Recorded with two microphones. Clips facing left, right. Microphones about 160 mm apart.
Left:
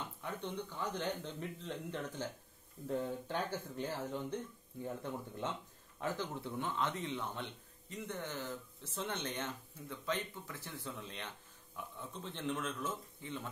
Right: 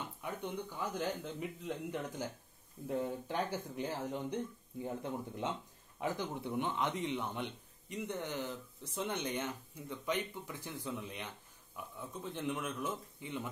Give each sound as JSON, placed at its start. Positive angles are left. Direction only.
{"t": 0.2, "sound": "a man's voice", "side_deg": -10}